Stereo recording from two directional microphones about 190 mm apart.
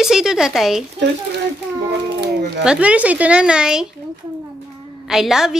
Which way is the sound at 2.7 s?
5° right (ahead or behind).